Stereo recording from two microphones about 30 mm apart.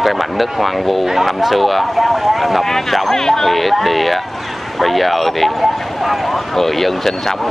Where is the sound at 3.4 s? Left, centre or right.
Centre.